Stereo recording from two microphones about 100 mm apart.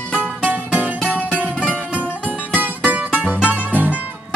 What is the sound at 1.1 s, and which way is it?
Music, 15° left (ahead or behind).